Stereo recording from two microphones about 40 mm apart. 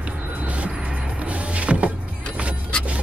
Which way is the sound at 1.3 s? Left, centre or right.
Right.